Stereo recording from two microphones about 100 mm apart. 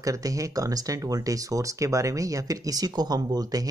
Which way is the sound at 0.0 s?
35° right (ahead or behind).